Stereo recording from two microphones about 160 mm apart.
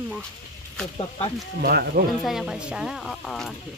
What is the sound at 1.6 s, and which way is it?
Speech, 85° right.